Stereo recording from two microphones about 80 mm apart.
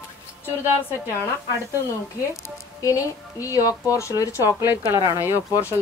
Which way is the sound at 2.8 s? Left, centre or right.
Left.